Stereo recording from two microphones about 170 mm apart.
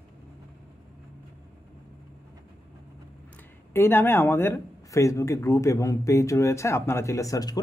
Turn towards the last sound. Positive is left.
turn(degrees=20)  # may be behind; listen again after turning